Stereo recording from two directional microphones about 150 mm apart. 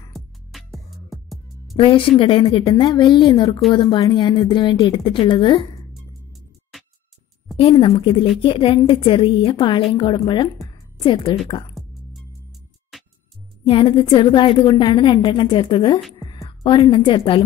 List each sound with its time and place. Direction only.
0.1 s music: centre (ahead or behind)
1.8 s a woman's voice: 35° left (ahead or behind)
7.5 s a woman's voice: 35° left (ahead or behind)
11.8 s music: centre (ahead or behind)
12.9 s music: centre (ahead or behind)
13.7 s a woman's voice: 35° left (ahead or behind)